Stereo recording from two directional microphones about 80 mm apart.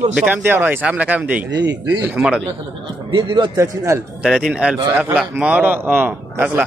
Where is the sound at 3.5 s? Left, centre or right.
Right.